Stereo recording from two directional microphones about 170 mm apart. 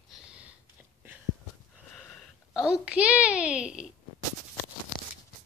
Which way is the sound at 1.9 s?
5° left (ahead or behind).